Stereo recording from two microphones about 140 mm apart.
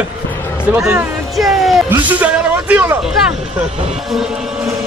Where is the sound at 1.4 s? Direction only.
Centre (ahead or behind).